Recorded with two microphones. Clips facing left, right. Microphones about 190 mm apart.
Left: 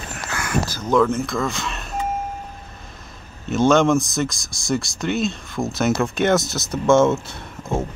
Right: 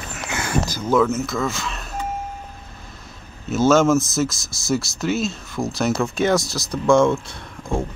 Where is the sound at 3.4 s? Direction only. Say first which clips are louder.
Even; 5° right (ahead or behind).